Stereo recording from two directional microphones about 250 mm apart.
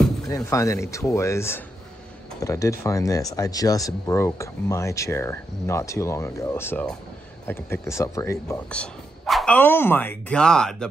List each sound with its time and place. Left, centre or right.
0.3 s speech: centre